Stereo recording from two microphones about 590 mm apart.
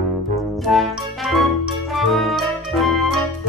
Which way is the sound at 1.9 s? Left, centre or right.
Centre.